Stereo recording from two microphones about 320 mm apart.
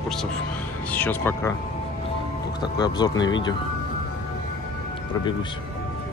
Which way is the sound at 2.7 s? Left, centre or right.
Centre.